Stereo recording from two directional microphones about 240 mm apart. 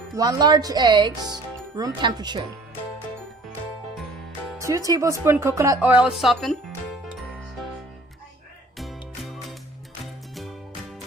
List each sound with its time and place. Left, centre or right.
0.1 s speech: centre
4.6 s speech: centre
8.7 s music: centre